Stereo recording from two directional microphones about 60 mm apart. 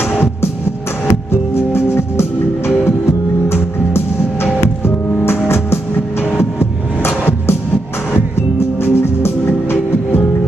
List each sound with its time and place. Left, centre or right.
0.1 s music: left
8.8 s music: left